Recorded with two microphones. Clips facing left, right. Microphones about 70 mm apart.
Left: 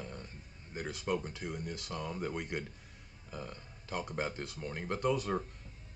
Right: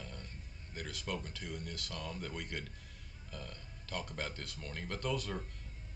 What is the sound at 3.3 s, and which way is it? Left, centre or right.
Burping, left.